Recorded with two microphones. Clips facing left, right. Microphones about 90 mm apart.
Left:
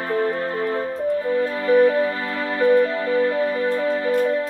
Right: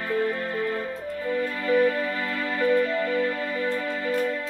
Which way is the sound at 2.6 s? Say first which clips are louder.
Left 6 dB; 35° left (ahead or behind).